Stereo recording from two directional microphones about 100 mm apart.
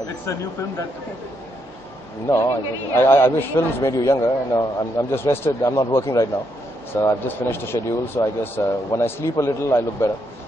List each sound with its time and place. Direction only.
2.2 s a man's voice: 30° left (ahead or behind)